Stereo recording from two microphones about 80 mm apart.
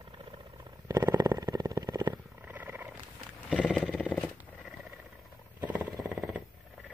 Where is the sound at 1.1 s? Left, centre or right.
Right.